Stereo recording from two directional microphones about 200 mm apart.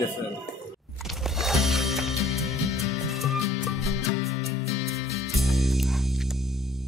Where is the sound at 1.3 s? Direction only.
Centre (ahead or behind).